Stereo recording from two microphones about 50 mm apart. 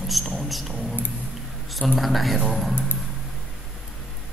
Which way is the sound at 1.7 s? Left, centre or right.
Centre.